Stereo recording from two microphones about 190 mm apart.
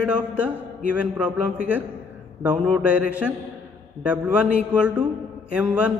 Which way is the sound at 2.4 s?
5° right (ahead or behind).